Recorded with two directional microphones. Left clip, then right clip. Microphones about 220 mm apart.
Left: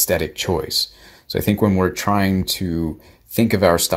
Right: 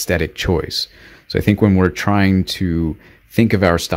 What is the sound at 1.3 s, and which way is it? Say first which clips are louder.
Speech: right 3 dB; 30° right (ahead or behind).